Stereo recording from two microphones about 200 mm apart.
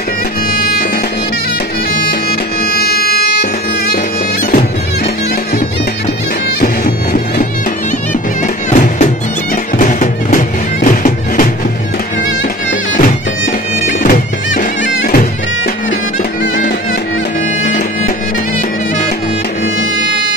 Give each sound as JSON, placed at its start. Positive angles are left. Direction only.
{"t": 0.5, "sound": "music", "side_deg": 50}
{"t": 2.6, "sound": "music", "side_deg": 50}
{"t": 6.6, "sound": "music", "side_deg": 45}
{"t": 8.6, "sound": "music", "side_deg": 40}
{"t": 12.9, "sound": "music", "side_deg": 40}